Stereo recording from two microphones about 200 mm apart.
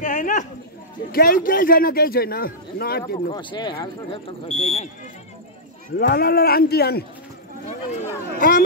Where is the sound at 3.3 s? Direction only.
25° left (ahead or behind).